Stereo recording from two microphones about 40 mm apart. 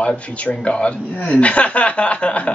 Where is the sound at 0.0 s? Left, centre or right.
Left.